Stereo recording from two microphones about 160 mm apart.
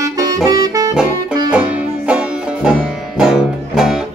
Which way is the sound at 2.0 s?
5° right (ahead or behind).